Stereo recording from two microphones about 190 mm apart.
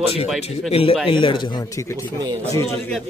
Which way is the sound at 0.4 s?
30° left (ahead or behind).